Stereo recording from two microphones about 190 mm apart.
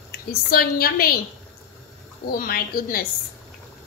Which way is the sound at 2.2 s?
50° left (ahead or behind).